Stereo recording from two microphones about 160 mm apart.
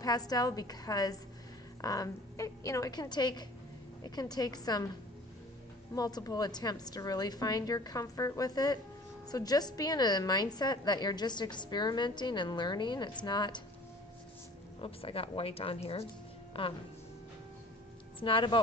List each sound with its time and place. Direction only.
0.0 s a woman's voice: 25° left (ahead or behind)
5.9 s a woman's voice: 25° left (ahead or behind)
14.8 s speech: 35° left (ahead or behind)
18.2 s speech: 30° left (ahead or behind)